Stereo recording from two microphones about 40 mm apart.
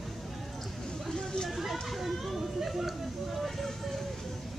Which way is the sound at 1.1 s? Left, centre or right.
Centre.